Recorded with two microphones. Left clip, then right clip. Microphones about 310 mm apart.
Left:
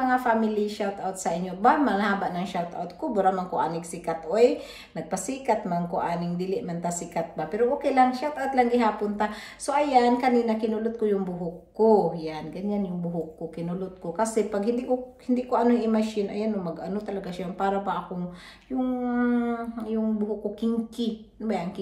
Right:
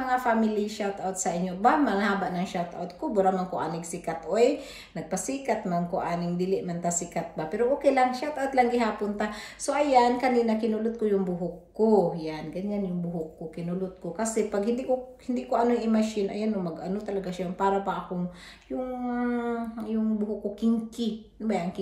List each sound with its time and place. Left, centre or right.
0.0 s speech: centre
14.1 s speech: centre